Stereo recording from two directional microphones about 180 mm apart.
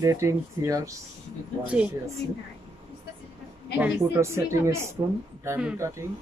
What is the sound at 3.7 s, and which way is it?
Speech, 10° right (ahead or behind).